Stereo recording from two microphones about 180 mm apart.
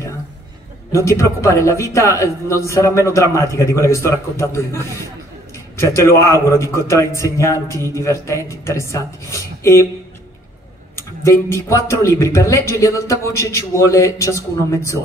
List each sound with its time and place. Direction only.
0.9 s a man's voice: 15° left (ahead or behind)
11.0 s a man's voice: 15° left (ahead or behind)